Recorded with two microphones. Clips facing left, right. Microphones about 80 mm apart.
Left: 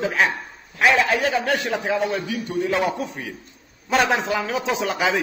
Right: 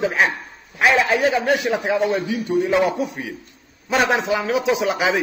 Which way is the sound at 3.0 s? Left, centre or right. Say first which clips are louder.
Right 4 dB; centre.